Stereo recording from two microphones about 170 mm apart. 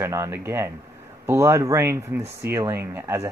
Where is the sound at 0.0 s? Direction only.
15° right (ahead or behind).